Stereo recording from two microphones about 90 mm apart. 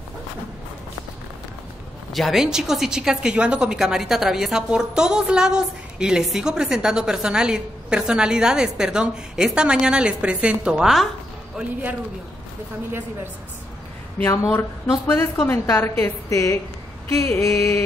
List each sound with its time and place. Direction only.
2.1 s a woman's voice: centre (ahead or behind)
14.3 s a woman's voice: 35° left (ahead or behind)